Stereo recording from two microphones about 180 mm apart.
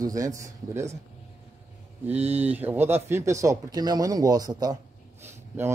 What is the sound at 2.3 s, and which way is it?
Speech, 10° right (ahead or behind).